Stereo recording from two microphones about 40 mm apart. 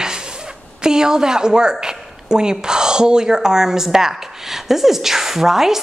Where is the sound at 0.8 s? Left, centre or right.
Centre.